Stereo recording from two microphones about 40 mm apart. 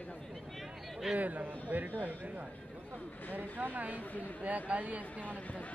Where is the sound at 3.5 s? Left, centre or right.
Right.